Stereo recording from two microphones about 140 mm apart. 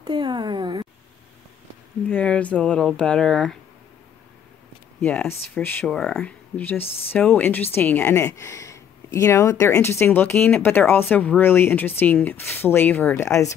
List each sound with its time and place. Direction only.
0.0 s speech: 30° right (ahead or behind)
2.0 s speech: 10° left (ahead or behind)
5.0 s speech: 10° left (ahead or behind)